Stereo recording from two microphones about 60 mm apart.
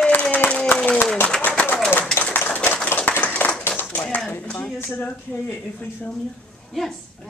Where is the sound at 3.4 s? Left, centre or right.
Left.